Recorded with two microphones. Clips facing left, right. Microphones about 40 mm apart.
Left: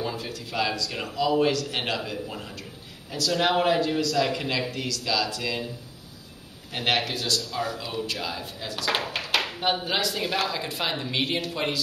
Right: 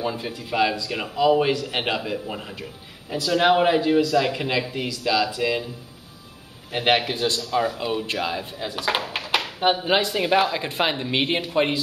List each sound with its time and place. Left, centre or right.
0.0 s a man's voice: centre
6.7 s a man's voice: centre